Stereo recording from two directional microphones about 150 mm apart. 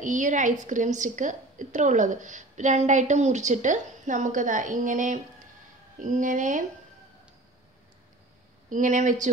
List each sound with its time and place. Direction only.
0.0 s a woman's voice: 55° right (ahead or behind)
8.6 s a woman's voice: 55° right (ahead or behind)